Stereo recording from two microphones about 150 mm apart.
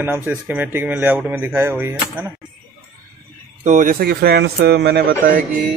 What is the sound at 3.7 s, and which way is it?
A man's voice, 60° right (ahead or behind).